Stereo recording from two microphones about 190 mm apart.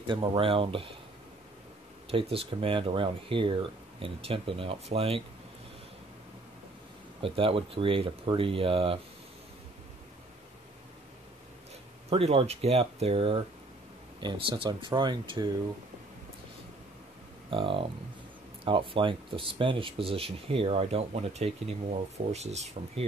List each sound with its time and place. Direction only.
0.0 s speech: 25° right (ahead or behind)
2.0 s speech: 30° right (ahead or behind)
7.2 s speech: 30° right (ahead or behind)
12.1 s speech: 30° right (ahead or behind)
17.5 s speech: 30° right (ahead or behind)